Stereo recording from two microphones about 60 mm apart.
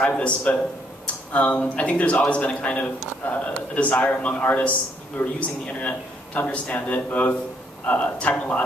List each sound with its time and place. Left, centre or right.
0.0 s a man's voice: centre